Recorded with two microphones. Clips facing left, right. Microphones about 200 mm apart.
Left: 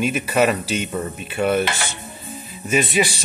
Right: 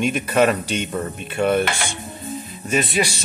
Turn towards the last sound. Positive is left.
turn(degrees=0)  # may be behind; listen again after turning